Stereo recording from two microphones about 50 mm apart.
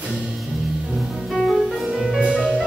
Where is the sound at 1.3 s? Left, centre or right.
Centre.